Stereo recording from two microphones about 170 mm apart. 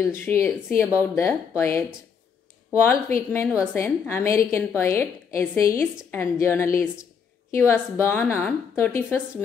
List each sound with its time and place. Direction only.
0.0 s a woman's voice: 15° left (ahead or behind)